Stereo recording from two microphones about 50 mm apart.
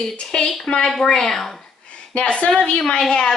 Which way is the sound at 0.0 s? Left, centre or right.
Centre.